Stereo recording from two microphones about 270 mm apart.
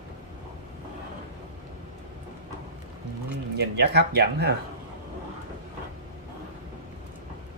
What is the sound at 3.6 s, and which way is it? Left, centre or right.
Speech, right.